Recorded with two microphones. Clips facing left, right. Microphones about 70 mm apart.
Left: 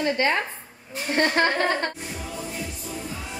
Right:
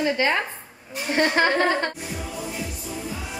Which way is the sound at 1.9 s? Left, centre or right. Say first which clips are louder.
Right 1 dB; centre.